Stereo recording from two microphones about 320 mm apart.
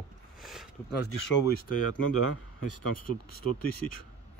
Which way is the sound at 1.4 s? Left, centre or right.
Left.